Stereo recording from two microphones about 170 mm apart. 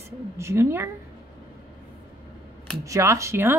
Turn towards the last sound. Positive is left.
turn(degrees=-15)  # may be behind; listen again after turning